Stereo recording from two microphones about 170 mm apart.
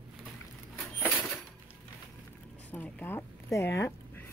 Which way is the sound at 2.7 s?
10° left (ahead or behind).